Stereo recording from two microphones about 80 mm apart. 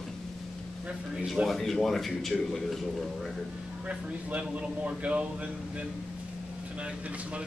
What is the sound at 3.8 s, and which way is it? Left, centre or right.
Speech, centre.